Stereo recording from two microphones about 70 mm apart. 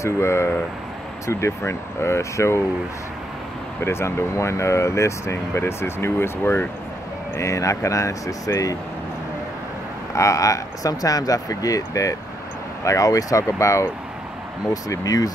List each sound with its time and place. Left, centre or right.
0.0 s speech: left
3.8 s speech: left
7.3 s speech: left
10.1 s speech: left
14.7 s speech: left